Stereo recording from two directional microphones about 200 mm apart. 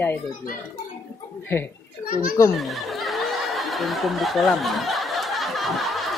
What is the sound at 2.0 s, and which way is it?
Speech, 45° left (ahead or behind).